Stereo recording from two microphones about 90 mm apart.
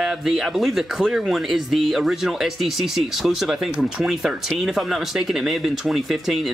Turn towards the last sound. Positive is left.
turn(degrees=0)  # may be behind; listen again after turning